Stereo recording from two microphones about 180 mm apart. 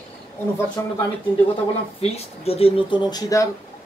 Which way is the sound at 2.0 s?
35° left (ahead or behind).